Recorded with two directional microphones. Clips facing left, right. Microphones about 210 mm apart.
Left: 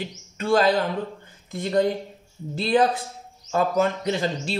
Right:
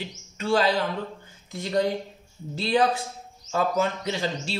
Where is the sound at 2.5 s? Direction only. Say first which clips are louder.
Left 2 dB; 50° left (ahead or behind).